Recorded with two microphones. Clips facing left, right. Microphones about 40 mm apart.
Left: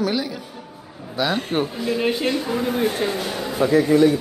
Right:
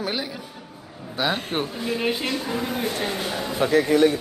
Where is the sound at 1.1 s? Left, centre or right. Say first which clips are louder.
Left 3 dB; centre.